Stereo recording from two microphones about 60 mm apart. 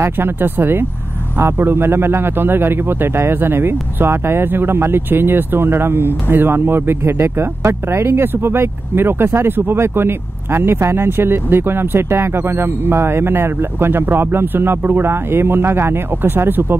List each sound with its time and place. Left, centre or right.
0.0 s a man's voice: right